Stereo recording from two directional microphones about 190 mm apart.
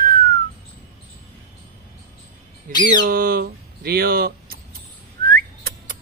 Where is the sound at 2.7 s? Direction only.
45° right (ahead or behind).